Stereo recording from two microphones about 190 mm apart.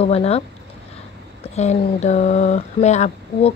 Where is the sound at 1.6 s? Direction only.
35° left (ahead or behind).